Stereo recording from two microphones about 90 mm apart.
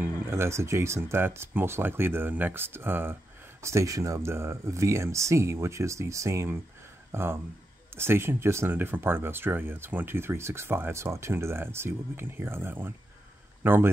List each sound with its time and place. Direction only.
0.3 s speech: 30° right (ahead or behind)
3.6 s speech: 35° right (ahead or behind)